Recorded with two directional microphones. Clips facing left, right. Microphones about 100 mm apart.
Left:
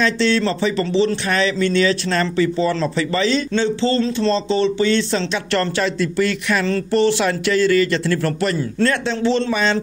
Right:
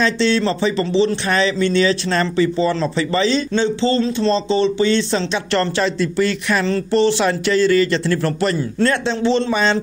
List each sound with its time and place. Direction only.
0.0 s speech: 20° right (ahead or behind)